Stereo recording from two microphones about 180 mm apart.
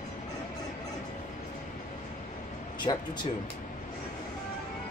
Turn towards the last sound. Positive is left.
turn(degrees=25)  # may be behind; listen again after turning